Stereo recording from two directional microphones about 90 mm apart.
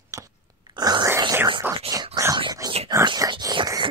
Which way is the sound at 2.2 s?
50° right (ahead or behind).